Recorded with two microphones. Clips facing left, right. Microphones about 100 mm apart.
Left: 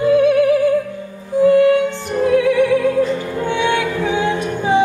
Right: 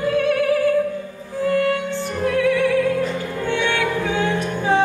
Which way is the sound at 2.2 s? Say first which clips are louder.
Left 4 dB; 15° left (ahead or behind).